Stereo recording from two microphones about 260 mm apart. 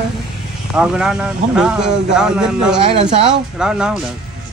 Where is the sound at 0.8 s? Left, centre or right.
Centre.